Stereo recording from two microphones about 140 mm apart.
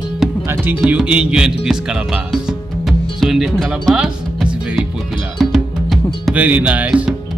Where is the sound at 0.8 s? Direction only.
5° right (ahead or behind).